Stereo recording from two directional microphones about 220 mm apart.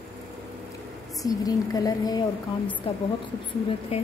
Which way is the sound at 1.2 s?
15° left (ahead or behind).